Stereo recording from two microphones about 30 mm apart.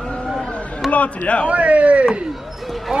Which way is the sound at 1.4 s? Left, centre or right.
Right.